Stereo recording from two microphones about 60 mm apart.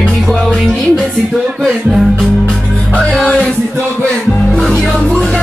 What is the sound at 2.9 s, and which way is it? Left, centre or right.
Music, centre.